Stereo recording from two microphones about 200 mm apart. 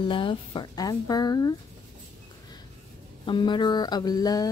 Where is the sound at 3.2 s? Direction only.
25° left (ahead or behind).